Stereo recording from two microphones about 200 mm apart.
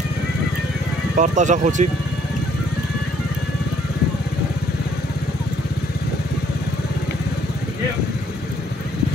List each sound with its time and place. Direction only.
1.1 s speech: 35° right (ahead or behind)